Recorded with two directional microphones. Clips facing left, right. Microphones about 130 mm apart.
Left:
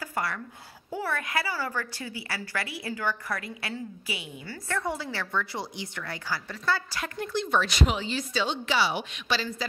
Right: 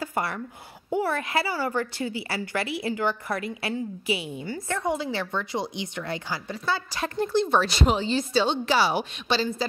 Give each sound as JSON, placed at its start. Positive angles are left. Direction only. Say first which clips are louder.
{"t": 0.0, "sound": "a sound", "louder": "right 3 dB", "side_deg": -25}
{"t": 0.8, "sound": "a woman's voice", "louder": "right 6 dB", "side_deg": -25}
{"t": 7.0, "sound": "a woman's voice", "louder": "right 7 dB", "side_deg": -30}
{"t": 9.3, "sound": "a woman's voice", "louder": "right 4 dB", "side_deg": -30}